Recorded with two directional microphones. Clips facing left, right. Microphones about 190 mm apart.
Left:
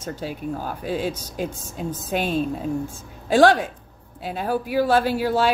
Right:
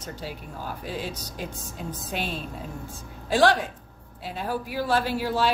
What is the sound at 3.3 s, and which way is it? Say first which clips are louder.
Speech: left 5 dB; 45° left (ahead or behind).